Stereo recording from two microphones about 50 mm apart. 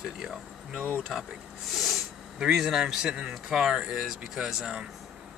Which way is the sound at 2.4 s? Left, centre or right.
Centre.